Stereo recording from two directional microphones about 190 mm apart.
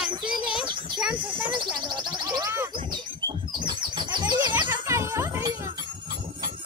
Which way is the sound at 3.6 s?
25° right (ahead or behind).